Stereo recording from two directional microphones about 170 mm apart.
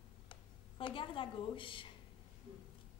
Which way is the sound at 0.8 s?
30° left (ahead or behind).